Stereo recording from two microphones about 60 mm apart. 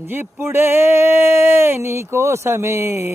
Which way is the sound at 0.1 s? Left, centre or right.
Right.